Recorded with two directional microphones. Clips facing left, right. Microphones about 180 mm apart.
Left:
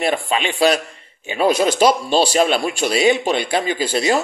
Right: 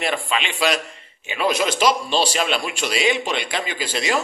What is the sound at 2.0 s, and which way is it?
Speech, 45° left (ahead or behind).